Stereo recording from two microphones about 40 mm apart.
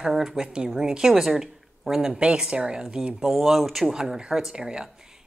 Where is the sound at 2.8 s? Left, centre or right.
Centre.